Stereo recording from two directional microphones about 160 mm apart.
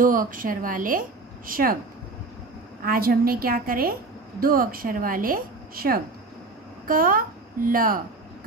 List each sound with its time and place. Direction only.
0.0 s speech: 60° right (ahead or behind)
2.8 s speech: 65° right (ahead or behind)